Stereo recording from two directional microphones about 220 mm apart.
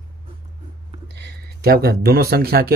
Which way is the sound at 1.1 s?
50° right (ahead or behind).